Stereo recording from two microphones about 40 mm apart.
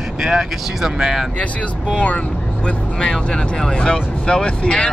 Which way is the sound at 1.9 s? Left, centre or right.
Left.